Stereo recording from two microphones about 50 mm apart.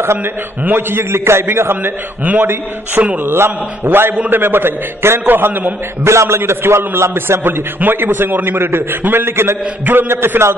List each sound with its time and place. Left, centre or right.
0.0 s a man's voice: right
0.7 s a man's voice: right
2.4 s speech: right
3.3 s a man's voice: right
5.2 s speech: right
6.0 s a man's voice: right